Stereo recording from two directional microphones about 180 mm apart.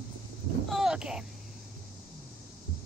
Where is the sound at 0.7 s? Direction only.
Centre (ahead or behind).